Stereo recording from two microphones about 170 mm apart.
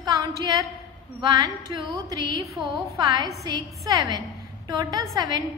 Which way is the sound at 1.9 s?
25° right (ahead or behind).